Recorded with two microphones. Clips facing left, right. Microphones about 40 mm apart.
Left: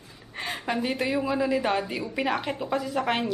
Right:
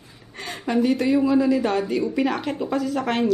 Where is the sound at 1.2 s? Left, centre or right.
Centre.